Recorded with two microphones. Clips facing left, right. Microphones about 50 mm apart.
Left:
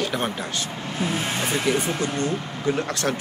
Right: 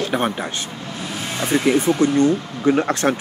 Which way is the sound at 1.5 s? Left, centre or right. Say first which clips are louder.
Right 9 dB; right.